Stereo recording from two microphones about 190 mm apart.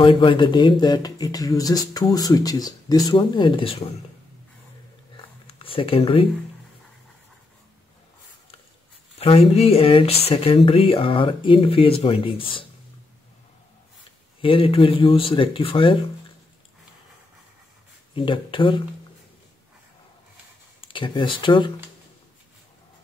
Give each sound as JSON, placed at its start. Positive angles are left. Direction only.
{"t": 0.0, "sound": "speech", "side_deg": 25}
{"t": 5.1, "sound": "a sound", "side_deg": 30}
{"t": 9.2, "sound": "speech", "side_deg": 30}
{"t": 14.4, "sound": "speech", "side_deg": 30}
{"t": 18.1, "sound": "speech", "side_deg": 25}
{"t": 20.8, "sound": "speech", "side_deg": 25}